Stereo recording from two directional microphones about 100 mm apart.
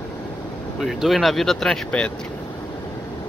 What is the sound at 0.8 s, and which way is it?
Speech, centre (ahead or behind).